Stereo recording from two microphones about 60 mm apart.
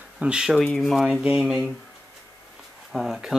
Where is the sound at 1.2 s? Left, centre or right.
Centre.